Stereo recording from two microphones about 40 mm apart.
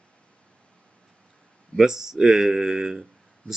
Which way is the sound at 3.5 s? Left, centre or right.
Left.